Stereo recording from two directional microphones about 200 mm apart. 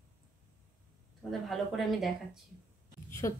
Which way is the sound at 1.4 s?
Centre (ahead or behind).